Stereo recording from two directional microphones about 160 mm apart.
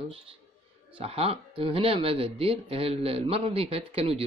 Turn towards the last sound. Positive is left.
turn(degrees=-40)  # may be behind; listen again after turning